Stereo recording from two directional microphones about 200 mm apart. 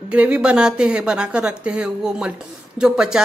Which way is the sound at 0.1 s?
5° right (ahead or behind).